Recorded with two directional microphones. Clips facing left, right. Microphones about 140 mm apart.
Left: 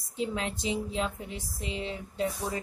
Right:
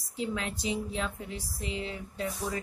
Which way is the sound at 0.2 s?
25° left (ahead or behind).